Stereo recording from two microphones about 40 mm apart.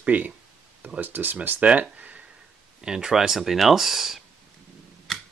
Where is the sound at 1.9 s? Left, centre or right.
Right.